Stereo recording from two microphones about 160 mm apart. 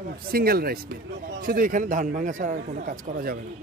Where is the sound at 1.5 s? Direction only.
60° right (ahead or behind).